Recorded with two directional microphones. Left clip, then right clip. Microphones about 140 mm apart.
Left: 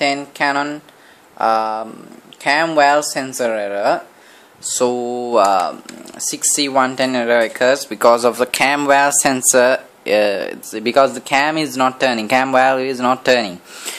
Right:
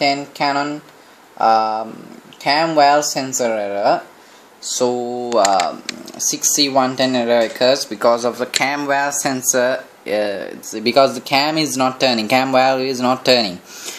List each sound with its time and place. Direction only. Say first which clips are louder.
0.4 s speech: left 1 dB; 35° left (ahead or behind)
2.4 s speech: even; centre (ahead or behind)
2.8 s speech: right 1 dB; 35° left (ahead or behind)
3.1 s speech: right 1 dB; centre (ahead or behind)
3.4 s speech: even; 40° left (ahead or behind)
4.7 s speech: left 1 dB; 55° left (ahead or behind)
5.0 s mantra: left 1 dB; 80° left
5.3 s speech: left 1 dB; 45° left (ahead or behind)
6.1 s speech: right 2 dB; centre (ahead or behind)
6.6 s speech: even; 30° left (ahead or behind)
7.9 s speech: left 3 dB; 55° left (ahead or behind)
10.8 s speech: even; 5° right (ahead or behind)